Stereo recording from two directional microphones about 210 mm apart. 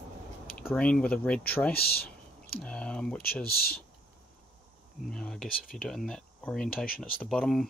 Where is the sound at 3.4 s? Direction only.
45° left (ahead or behind).